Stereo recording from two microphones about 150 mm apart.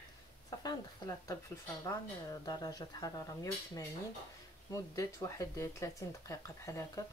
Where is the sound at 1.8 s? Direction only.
25° left (ahead or behind).